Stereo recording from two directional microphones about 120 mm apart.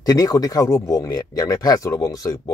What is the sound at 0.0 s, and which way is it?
Speech, 30° left (ahead or behind).